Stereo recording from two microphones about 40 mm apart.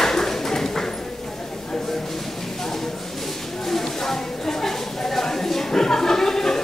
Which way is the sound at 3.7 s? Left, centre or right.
Centre.